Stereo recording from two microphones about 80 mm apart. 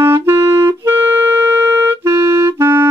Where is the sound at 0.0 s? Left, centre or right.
Right.